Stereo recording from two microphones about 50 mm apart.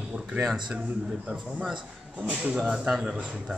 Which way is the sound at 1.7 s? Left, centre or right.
Right.